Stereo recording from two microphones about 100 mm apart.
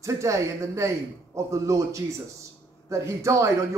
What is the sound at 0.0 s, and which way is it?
A man's voice, 30° right (ahead or behind).